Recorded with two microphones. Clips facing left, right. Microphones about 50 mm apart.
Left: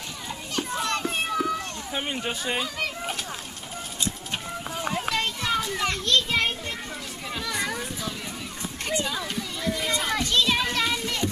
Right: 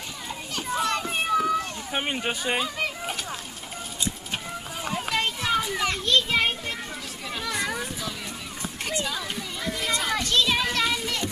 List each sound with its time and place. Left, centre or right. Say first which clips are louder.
0.6 s children playing: right 1 dB; centre
1.9 s speech: even; right
3.0 s a sound: even; centre
4.0 s children playing: even; centre